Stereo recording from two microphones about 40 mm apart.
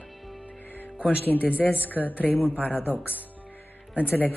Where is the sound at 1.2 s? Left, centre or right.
Left.